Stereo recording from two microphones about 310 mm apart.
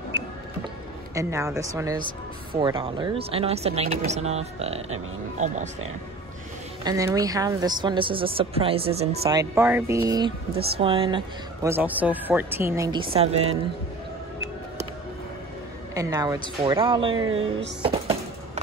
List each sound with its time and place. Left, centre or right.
1.1 s speech: centre
6.8 s speech: centre
15.9 s speech: centre
17.8 s music: centre